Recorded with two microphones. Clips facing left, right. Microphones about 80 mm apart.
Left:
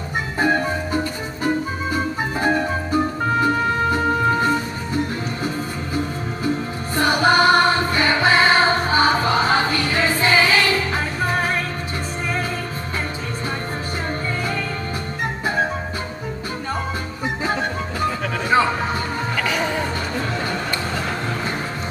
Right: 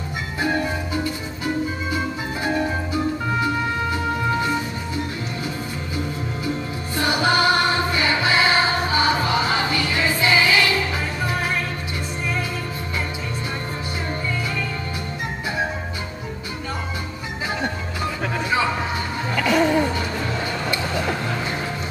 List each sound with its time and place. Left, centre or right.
0.1 s music: left
7.0 s music: left